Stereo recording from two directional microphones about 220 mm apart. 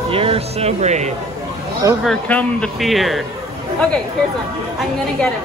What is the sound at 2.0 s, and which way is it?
Speech, 5° left (ahead or behind).